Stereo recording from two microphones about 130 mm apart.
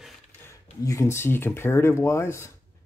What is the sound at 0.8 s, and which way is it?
Speech, 25° left (ahead or behind).